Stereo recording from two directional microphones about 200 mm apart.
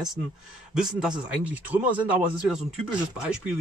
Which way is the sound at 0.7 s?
5° right (ahead or behind).